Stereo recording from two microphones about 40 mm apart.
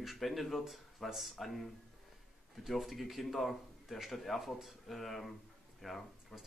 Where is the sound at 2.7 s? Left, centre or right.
Centre.